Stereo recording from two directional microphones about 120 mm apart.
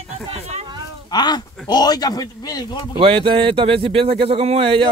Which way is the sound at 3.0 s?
45° right (ahead or behind).